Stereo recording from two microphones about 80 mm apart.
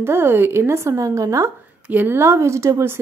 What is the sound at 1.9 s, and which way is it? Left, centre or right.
A woman's voice, right.